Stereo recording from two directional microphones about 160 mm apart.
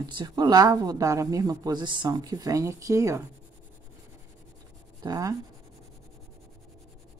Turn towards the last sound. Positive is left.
turn(degrees=-20)  # may be behind; listen again after turning